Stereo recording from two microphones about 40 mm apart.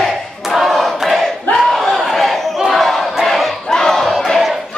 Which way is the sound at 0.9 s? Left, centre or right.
Centre.